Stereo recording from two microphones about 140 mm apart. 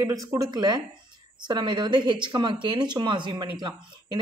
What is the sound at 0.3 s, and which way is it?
A woman's voice, 30° right (ahead or behind).